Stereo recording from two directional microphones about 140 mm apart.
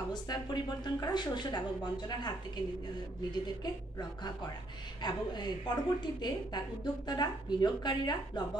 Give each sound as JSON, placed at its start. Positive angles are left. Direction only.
{"t": 0.1, "sound": "a woman's voice", "side_deg": 30}
{"t": 5.0, "sound": "a woman's voice", "side_deg": 30}